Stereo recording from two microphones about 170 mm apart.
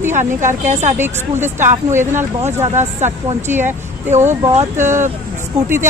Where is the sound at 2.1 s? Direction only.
45° right (ahead or behind).